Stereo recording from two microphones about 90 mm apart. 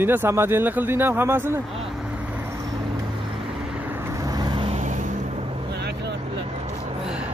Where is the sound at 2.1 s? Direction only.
15° right (ahead or behind).